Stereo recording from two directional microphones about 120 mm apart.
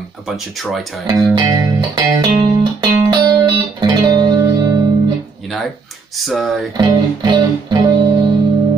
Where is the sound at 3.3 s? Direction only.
35° right (ahead or behind).